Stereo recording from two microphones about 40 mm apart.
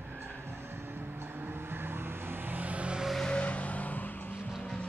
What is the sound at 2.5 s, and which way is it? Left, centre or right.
Vehicle, right.